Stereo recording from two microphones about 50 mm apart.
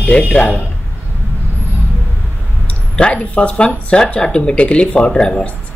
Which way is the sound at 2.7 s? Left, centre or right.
Left.